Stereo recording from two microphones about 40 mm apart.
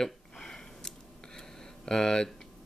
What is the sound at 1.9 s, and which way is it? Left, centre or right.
Speech, centre.